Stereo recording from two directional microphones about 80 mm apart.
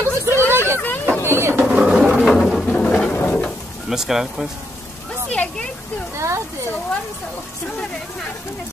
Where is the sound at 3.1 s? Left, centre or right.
Centre.